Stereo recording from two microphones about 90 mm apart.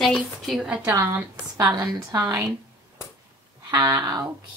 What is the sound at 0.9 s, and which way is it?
Speech, 25° right (ahead or behind).